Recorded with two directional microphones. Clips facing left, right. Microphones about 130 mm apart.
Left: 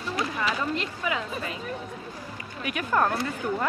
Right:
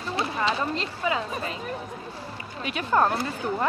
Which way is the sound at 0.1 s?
30° right (ahead or behind).